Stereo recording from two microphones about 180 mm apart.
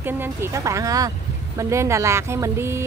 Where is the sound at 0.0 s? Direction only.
10° right (ahead or behind).